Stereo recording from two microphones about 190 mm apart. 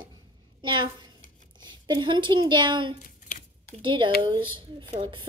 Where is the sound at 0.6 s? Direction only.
25° right (ahead or behind).